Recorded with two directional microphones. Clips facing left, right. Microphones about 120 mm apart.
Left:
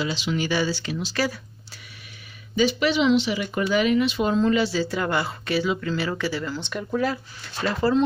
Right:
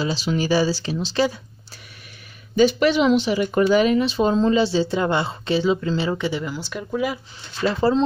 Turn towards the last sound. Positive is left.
turn(degrees=-25)  # may be behind; listen again after turning